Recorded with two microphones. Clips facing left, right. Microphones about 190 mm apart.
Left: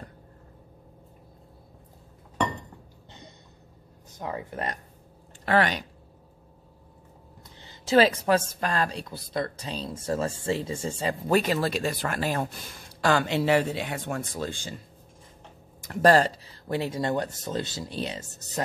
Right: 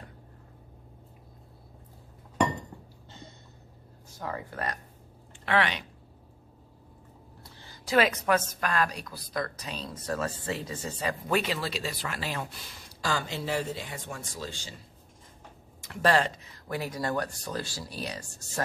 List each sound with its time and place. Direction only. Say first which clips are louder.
4.1 s a woman's voice: left 3 dB; 20° left (ahead or behind)
5.4 s speech: left 4 dB; 40° left (ahead or behind)
7.4 s a woman's voice: left 5 dB; 20° left (ahead or behind); by 12.6 s 45° left (ahead or behind)
13.0 s speech: left 8 dB; 70° left (ahead or behind); by 14.8 s 50° left (ahead or behind)
15.8 s a woman's voice: left 5 dB; 45° left (ahead or behind); by 18.6 s 20° left (ahead or behind)